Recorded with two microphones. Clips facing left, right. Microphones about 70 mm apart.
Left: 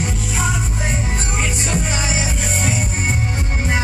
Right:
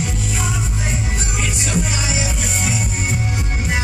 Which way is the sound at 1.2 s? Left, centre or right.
Left.